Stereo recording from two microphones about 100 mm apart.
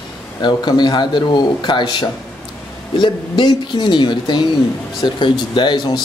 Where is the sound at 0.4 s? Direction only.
50° left (ahead or behind).